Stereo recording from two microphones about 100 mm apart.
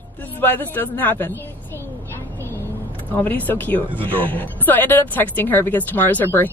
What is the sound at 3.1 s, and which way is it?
A woman's voice, 20° left (ahead or behind).